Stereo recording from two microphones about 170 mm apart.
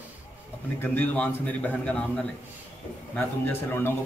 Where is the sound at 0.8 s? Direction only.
10° left (ahead or behind).